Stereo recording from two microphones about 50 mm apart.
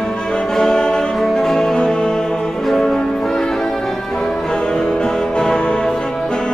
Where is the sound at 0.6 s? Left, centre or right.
Centre.